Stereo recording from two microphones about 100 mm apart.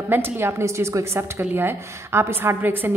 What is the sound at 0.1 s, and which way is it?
A woman's voice, 25° right (ahead or behind).